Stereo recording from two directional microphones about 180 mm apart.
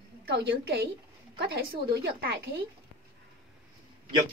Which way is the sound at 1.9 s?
60° right (ahead or behind).